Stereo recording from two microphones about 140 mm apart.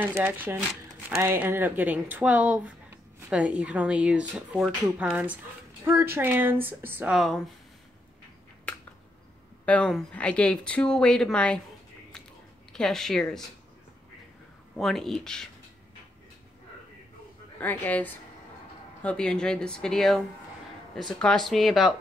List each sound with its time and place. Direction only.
0.0 s speech: 15° right (ahead or behind)
7.2 s speech: centre (ahead or behind)
8.7 s a sound: 5° left (ahead or behind)
9.7 s speech: 5° left (ahead or behind)
12.7 s speech: 5° left (ahead or behind)
14.8 s speech: centre (ahead or behind)
17.6 s speech: 10° left (ahead or behind)